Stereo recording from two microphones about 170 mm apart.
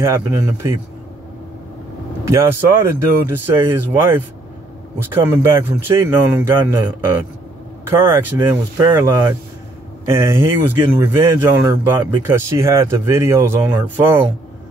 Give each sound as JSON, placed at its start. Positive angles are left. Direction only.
{"t": 0.0, "sound": "speech", "side_deg": -15}
{"t": 2.2, "sound": "speech", "side_deg": -15}